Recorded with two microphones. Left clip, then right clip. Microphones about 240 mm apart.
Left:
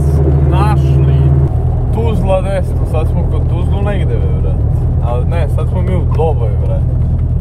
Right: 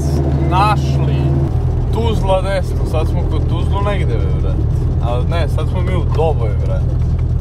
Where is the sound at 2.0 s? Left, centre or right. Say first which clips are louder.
Left 1 dB; right.